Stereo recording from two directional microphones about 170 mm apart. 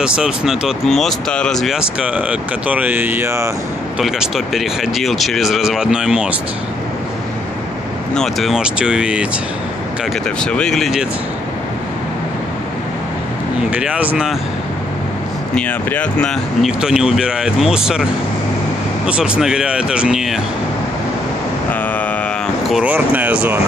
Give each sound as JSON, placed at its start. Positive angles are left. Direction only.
{"t": 0.0, "sound": "speech", "side_deg": -5}
{"t": 4.0, "sound": "speech", "side_deg": 0}
{"t": 8.1, "sound": "speech", "side_deg": 0}
{"t": 10.4, "sound": "speech", "side_deg": 5}
{"t": 13.7, "sound": "speech", "side_deg": -5}
{"t": 15.5, "sound": "speech", "side_deg": 10}
{"t": 19.0, "sound": "speech", "side_deg": -5}
{"t": 22.7, "sound": "speech", "side_deg": -5}